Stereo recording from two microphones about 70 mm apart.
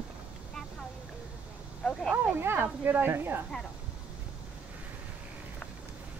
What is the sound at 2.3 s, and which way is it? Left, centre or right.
Speech, right.